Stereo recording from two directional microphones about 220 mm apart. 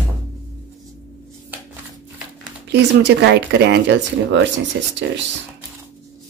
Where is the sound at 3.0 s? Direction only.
50° right (ahead or behind).